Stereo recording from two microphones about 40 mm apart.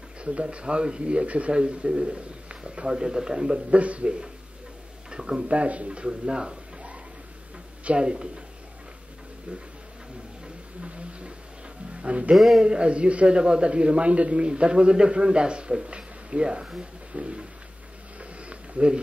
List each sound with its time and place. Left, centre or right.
0.2 s speech: right
3.7 s speech: right
7.8 s speech: right
10.8 s a sound: right
11.9 s speech: right
12.4 s speech: centre
12.6 s speech: right
18.4 s a sound: right